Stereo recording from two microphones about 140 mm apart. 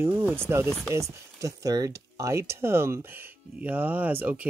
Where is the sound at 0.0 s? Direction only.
15° right (ahead or behind).